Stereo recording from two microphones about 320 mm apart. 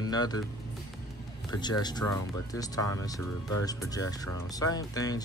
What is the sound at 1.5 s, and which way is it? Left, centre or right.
Speech, centre.